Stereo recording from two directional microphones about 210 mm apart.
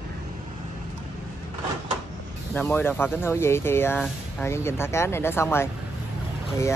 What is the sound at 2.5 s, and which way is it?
Speech, 10° left (ahead or behind).